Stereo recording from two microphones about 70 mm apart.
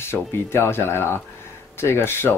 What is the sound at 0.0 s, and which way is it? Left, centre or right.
Speech, left.